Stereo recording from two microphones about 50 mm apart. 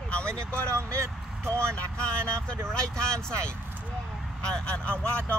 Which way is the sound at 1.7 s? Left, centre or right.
Left.